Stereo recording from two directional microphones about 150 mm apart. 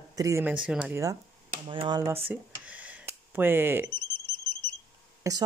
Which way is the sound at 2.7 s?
10° right (ahead or behind).